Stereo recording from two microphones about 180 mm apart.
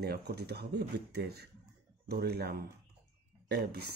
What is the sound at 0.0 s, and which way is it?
Speech, 60° right (ahead or behind).